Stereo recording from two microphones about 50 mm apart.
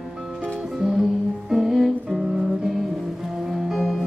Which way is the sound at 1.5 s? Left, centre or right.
Centre.